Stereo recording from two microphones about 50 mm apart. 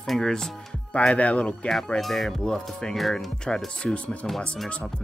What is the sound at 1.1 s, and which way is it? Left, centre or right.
Speech, left.